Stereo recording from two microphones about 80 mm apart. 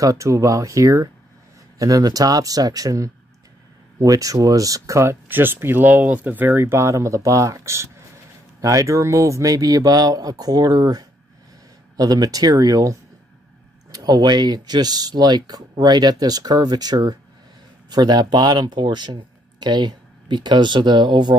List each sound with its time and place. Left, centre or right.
0.0 s speech: right
5.3 s speech: right
13.9 s speech: right